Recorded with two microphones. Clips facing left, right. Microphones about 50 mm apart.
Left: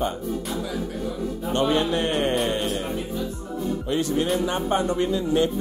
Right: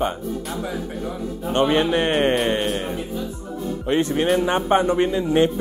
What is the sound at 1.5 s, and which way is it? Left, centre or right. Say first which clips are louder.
Speech: right 4 dB; right.